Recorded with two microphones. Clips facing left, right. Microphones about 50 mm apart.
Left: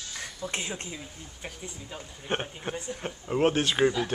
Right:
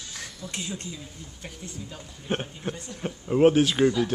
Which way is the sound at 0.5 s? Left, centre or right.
Left.